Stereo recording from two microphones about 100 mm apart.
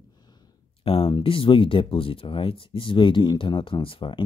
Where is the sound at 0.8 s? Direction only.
70° left (ahead or behind).